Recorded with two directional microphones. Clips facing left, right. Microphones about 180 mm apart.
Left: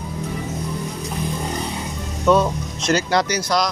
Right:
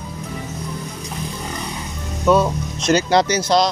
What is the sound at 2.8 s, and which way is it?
Speech, 25° right (ahead or behind).